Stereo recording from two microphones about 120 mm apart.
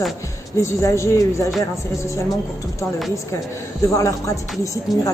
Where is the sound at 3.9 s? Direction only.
25° left (ahead or behind).